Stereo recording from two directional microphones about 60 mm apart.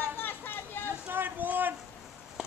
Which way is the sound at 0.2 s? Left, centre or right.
Left.